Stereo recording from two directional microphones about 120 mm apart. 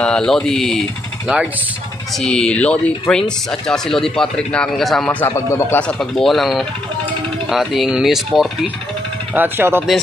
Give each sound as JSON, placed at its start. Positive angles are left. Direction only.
{"t": 0.0, "sound": "speech", "side_deg": 5}
{"t": 1.2, "sound": "speech", "side_deg": -10}
{"t": 2.1, "sound": "speech", "side_deg": 5}
{"t": 5.2, "sound": "speech", "side_deg": 25}
{"t": 5.8, "sound": "speech", "side_deg": 5}
{"t": 9.3, "sound": "speech", "side_deg": -15}